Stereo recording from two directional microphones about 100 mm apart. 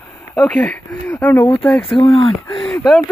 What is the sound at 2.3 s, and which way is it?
Speech, 5° left (ahead or behind).